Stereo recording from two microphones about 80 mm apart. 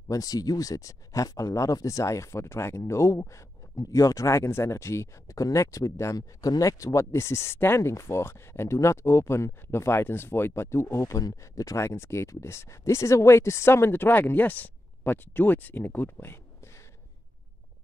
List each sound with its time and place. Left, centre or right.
0.1 s speech: left
6.1 s speech: left